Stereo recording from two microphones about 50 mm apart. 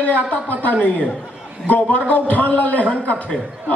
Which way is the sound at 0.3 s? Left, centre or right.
Left.